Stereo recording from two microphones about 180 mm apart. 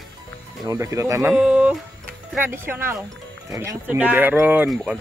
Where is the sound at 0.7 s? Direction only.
20° right (ahead or behind).